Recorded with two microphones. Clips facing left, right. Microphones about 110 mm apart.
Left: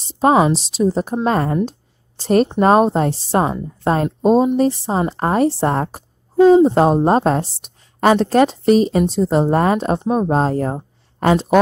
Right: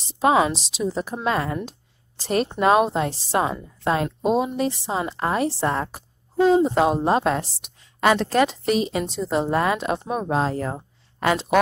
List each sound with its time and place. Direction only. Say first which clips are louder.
0.0 s a woman's voice: left 5 dB; 35° left (ahead or behind)
1.7 s a sound: left 4 dB; 40° left (ahead or behind)
2.6 s a woman's voice: left 2 dB; 40° left (ahead or behind)